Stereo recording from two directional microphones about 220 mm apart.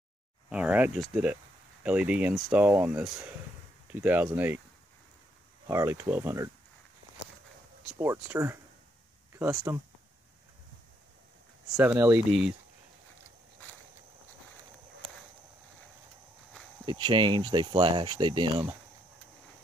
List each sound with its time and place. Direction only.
0.5 s speech: 5° right (ahead or behind)
5.7 s speech: 15° right (ahead or behind)
8.0 s speech: 10° right (ahead or behind)
9.7 s speech: 10° right (ahead or behind)
11.7 s speech: 10° right (ahead or behind)
16.8 s speech: 20° right (ahead or behind)